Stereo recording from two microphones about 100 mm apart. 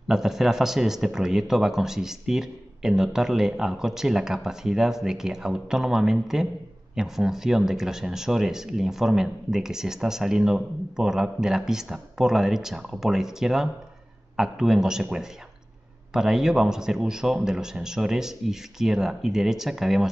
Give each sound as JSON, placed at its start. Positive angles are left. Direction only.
{"t": 0.1, "sound": "speech", "side_deg": -5}